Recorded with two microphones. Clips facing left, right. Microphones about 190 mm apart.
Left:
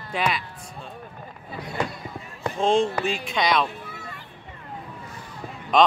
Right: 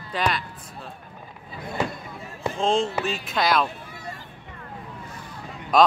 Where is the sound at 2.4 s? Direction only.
Centre (ahead or behind).